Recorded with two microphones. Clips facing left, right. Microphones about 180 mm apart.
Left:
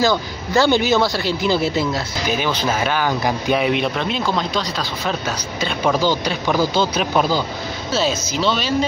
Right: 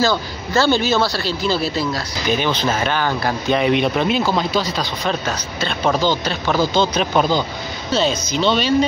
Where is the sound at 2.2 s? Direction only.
5° left (ahead or behind).